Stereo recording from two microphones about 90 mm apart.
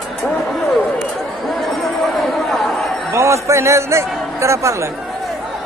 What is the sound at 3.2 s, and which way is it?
A man's voice, 35° right (ahead or behind).